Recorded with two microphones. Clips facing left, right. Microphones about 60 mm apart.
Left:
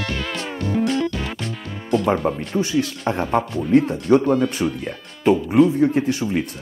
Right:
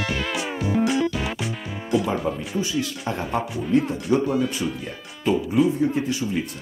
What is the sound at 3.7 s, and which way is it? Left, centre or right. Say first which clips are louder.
Speech: left 4 dB; left.